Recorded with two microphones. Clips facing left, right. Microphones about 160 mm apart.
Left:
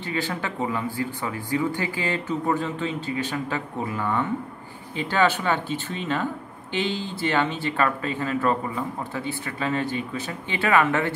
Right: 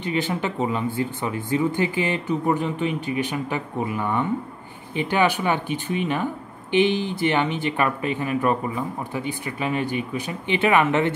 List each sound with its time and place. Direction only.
0.0 s speech: 20° right (ahead or behind)